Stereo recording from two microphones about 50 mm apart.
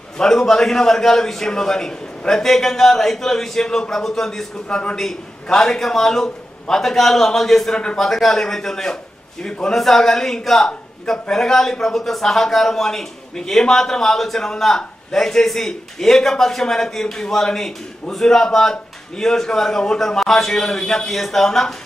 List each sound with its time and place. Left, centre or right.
0.2 s a man's voice: centre
4.6 s a man's voice: centre
4.9 s a man's voice: centre